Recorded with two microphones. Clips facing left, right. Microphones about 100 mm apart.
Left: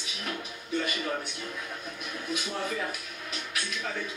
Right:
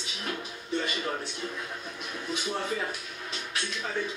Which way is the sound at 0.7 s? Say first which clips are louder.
Even; 25° right (ahead or behind).